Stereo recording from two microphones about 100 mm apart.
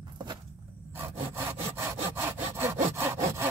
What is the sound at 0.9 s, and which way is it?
Sawing, 25° right (ahead or behind).